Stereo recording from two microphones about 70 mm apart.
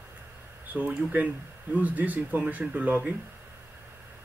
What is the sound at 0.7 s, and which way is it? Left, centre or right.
Speech, right.